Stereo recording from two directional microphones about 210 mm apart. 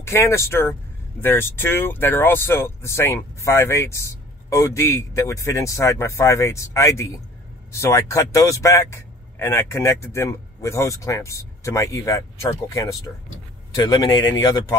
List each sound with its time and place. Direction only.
0.0 s speech: 10° left (ahead or behind)